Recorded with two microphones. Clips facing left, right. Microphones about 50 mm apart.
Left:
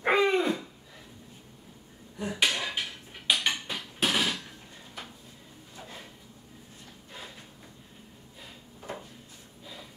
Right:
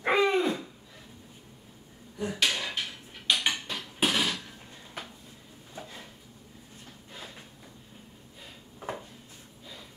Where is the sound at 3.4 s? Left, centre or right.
Centre.